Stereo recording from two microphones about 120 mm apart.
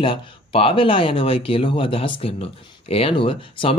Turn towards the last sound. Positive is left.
turn(degrees=45)  # may be behind; listen again after turning